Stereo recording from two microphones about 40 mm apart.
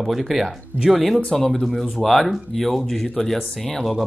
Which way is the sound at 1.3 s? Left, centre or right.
Centre.